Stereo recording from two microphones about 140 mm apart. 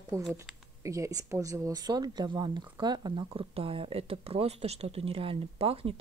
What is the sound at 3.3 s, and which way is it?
Speech, 40° right (ahead or behind).